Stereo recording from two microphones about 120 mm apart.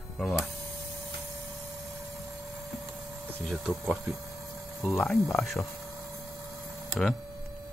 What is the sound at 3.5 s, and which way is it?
Speech, centre (ahead or behind).